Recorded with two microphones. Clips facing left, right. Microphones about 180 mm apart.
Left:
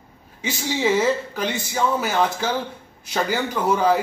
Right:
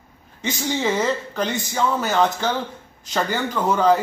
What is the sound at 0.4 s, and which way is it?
A man's voice, 5° left (ahead or behind).